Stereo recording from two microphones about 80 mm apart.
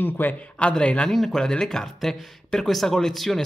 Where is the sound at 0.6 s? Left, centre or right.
Centre.